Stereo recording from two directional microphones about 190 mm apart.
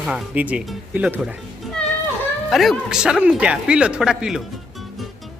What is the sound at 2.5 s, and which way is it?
Speech, centre (ahead or behind).